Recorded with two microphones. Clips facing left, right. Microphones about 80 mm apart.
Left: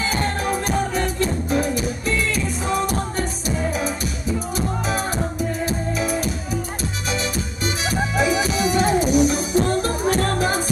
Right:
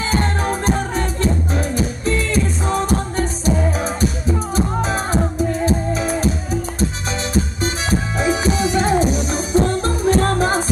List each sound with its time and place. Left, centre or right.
0.0 s music: right